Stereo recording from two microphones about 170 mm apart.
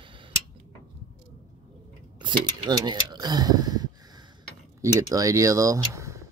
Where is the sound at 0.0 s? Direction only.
30° right (ahead or behind).